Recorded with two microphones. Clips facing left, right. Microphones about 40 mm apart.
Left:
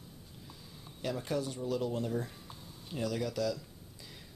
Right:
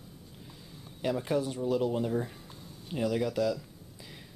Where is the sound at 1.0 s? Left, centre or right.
Centre.